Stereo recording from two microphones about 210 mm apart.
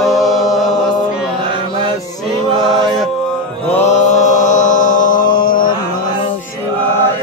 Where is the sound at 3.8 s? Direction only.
35° left (ahead or behind).